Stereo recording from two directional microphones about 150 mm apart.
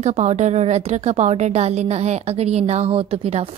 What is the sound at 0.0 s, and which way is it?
A woman's voice, 50° right (ahead or behind).